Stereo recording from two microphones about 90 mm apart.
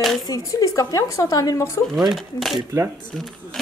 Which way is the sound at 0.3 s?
40° left (ahead or behind).